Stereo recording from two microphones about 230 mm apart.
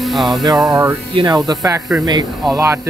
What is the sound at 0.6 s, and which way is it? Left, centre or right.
Speech, centre.